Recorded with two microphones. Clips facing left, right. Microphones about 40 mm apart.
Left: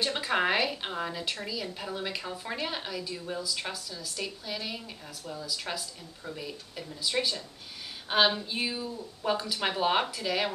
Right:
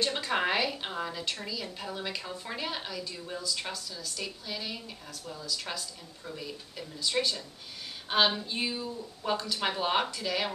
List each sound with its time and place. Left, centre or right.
0.0 s a woman's voice: centre